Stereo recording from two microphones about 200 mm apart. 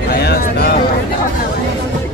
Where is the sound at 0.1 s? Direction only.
50° left (ahead or behind).